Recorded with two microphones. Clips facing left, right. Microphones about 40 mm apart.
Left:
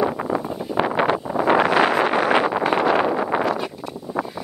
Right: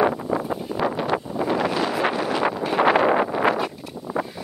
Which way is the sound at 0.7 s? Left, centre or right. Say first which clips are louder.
Left 5 dB; left.